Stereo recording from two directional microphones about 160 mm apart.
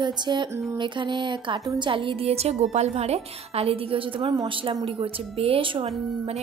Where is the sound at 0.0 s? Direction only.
30° right (ahead or behind).